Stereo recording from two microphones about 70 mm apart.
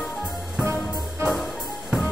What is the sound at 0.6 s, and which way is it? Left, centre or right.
Music, right.